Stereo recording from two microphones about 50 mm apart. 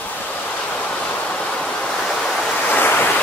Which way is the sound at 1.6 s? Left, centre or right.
Centre.